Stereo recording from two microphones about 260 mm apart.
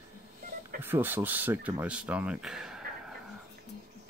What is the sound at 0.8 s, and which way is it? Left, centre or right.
Speech, centre.